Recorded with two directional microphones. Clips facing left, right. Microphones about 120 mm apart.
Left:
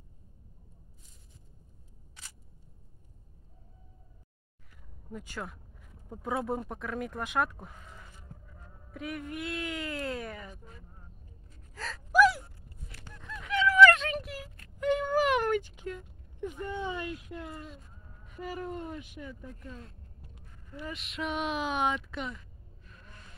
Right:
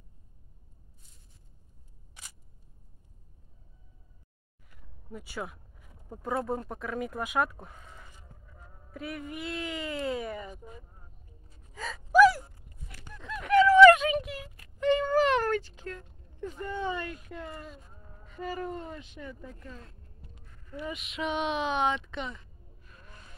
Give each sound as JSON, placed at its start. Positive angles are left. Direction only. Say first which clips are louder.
{"t": 5.1, "sound": "speech", "louder": "right 2 dB", "side_deg": -5}
{"t": 10.5, "sound": "speech", "louder": "right 5 dB", "side_deg": -15}
{"t": 11.7, "sound": "gasp", "louder": "right 2 dB", "side_deg": -5}
{"t": 13.1, "sound": "honk", "louder": "right 10 dB", "side_deg": -60}
{"t": 13.7, "sound": "a sound", "louder": "right 4 dB", "side_deg": -25}
{"t": 13.9, "sound": "a sound", "louder": "right 5 dB", "side_deg": 0}
{"t": 16.8, "sound": "speech", "louder": "right 2 dB", "side_deg": 5}